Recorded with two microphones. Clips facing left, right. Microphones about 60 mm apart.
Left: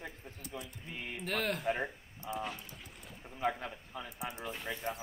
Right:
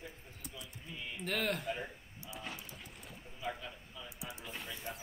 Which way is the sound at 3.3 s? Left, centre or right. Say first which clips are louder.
Left 7 dB; left.